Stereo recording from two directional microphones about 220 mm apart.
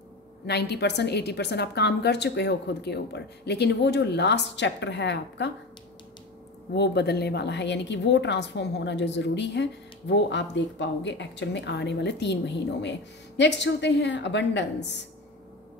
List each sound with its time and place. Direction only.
0.5 s a woman's voice: 50° left (ahead or behind)
6.7 s a woman's voice: 50° left (ahead or behind)